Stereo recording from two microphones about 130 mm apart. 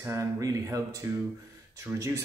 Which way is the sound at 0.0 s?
20° right (ahead or behind).